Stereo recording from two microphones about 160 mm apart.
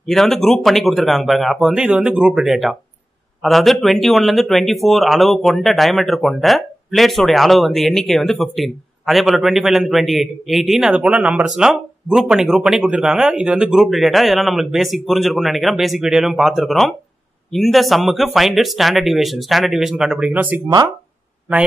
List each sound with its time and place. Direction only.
0.0 s speech: 5° left (ahead or behind)
20.6 s speech: 25° right (ahead or behind)